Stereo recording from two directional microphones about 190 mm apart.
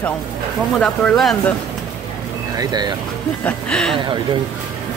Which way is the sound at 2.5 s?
20° right (ahead or behind).